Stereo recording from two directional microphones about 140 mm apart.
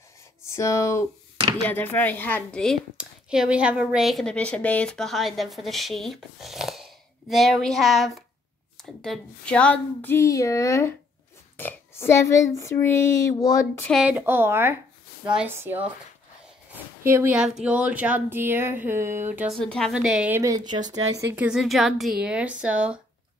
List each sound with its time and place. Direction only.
0.5 s a woman's voice: 20° left (ahead or behind); by 2.8 s 5° left (ahead or behind)
3.0 s a woman's voice: 5° right (ahead or behind); by 13.7 s 25° left (ahead or behind)
14.0 s speech: 15° right (ahead or behind)
17.4 s speech: 5° right (ahead or behind)
19.5 s a woman's voice: 5° left (ahead or behind)
19.9 s speech: 5° right (ahead or behind)
20.3 s speech: 25° right (ahead or behind)
21.4 s speech: 5° right (ahead or behind)